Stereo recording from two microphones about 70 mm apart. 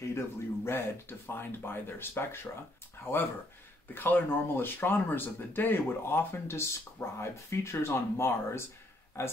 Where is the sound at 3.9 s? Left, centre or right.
Left.